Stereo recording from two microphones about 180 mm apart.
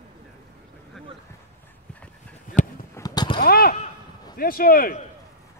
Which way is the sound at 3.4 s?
55° left (ahead or behind).